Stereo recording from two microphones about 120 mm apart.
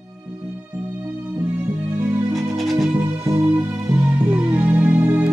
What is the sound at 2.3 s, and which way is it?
Music, centre (ahead or behind).